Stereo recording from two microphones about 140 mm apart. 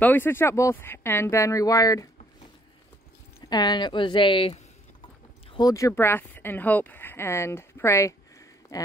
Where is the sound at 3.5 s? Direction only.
30° left (ahead or behind).